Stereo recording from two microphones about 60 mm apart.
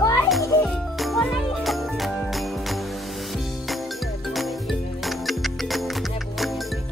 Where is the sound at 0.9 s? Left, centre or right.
Centre.